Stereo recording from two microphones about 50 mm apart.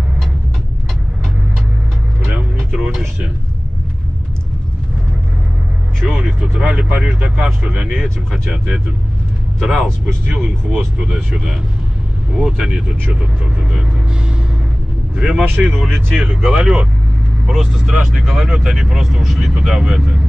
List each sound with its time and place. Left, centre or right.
6.2 s speech: right
9.6 s speech: centre
10.3 s speech: centre
12.4 s speech: centre
15.1 s speech: centre
16.2 s speech: right
17.5 s speech: centre